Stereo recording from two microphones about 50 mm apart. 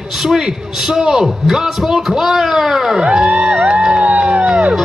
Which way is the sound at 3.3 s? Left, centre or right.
Centre.